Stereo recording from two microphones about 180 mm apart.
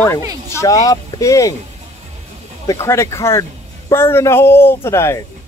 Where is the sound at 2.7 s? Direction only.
15° left (ahead or behind).